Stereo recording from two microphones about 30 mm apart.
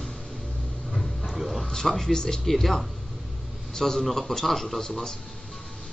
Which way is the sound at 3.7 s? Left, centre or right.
Centre.